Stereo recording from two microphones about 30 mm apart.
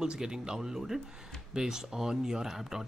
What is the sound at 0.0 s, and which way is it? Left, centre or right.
Speech, right.